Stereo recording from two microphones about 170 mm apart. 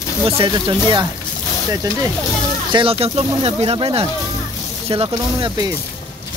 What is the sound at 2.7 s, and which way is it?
Speech, 30° right (ahead or behind).